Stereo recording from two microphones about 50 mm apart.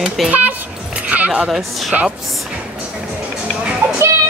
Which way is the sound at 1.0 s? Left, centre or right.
Right.